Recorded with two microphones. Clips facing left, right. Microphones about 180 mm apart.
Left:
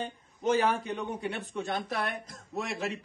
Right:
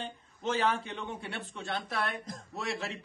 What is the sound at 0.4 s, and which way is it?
Speech, 15° left (ahead or behind).